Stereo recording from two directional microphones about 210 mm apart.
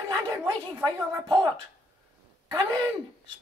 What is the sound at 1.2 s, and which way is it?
Speech, 20° right (ahead or behind).